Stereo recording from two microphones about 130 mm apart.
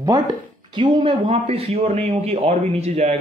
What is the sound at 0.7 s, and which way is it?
A man's voice, 40° right (ahead or behind).